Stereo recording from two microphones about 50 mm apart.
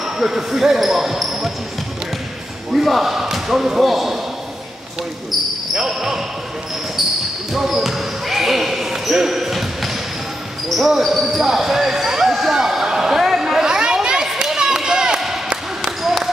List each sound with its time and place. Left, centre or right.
0.0 s speech: centre
2.7 s speech: centre
5.8 s speech: centre
7.5 s basketball bounce: centre